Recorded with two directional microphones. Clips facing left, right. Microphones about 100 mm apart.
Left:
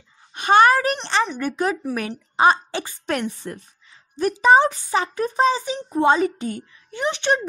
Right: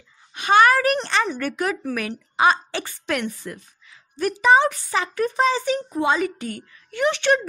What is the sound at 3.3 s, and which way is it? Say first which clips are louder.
A woman's voice: left 2 dB; 30° left (ahead or behind).